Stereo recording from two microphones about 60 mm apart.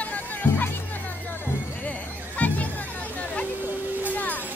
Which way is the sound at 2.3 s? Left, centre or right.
Left.